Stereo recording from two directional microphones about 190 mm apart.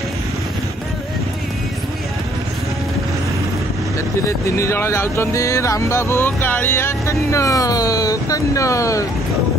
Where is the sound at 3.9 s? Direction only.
15° left (ahead or behind).